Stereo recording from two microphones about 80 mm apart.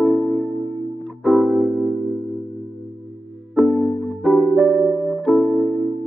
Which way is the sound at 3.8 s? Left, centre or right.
Centre.